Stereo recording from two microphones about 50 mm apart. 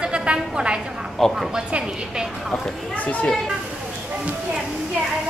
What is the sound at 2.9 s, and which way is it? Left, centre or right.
Speech, left.